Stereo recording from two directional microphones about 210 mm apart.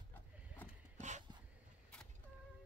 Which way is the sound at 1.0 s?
35° right (ahead or behind).